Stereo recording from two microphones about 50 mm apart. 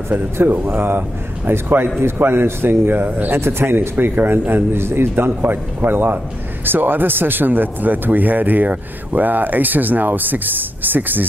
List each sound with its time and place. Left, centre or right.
0.1 s a man's voice: right
3.3 s a man's voice: right